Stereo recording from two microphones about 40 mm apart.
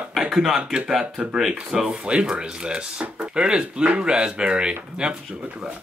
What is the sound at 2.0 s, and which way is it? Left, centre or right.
Speech, right.